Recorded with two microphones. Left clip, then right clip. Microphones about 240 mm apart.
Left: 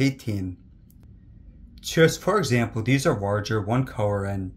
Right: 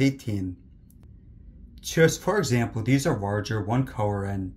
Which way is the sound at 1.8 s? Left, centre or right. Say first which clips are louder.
Left 2 dB; centre.